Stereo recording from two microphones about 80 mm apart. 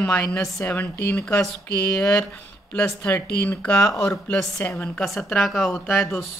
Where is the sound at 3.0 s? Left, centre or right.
Left.